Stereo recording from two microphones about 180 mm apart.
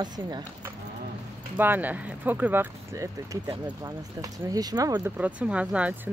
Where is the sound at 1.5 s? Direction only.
10° right (ahead or behind).